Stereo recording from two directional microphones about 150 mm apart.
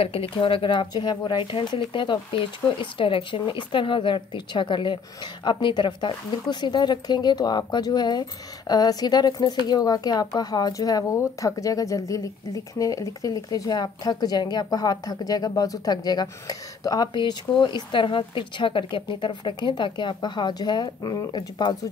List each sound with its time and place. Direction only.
0.0 s speech: 40° left (ahead or behind)